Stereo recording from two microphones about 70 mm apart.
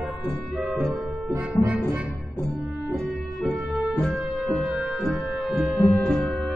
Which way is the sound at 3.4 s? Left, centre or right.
Centre.